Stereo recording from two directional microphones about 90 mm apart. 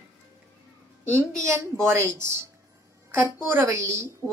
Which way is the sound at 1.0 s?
30° right (ahead or behind).